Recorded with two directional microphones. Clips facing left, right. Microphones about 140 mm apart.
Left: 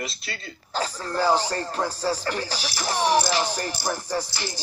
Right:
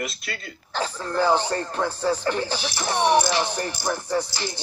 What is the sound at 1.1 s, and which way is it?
Speech, 10° left (ahead or behind).